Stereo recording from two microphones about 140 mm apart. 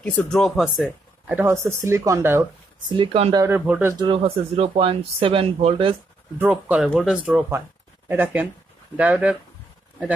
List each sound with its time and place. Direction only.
0.0 s speech: 5° left (ahead or behind)
0.8 s speech: 15° right (ahead or behind)
2.9 s speech: 40° right (ahead or behind)
3.4 s speech: 10° right (ahead or behind)
4.0 s speech: 40° right (ahead or behind)
6.3 s speech: 10° right (ahead or behind)